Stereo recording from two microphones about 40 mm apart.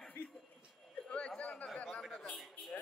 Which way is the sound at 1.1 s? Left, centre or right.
Left.